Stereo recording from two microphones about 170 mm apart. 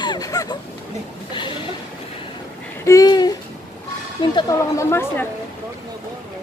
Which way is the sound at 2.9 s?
20° left (ahead or behind).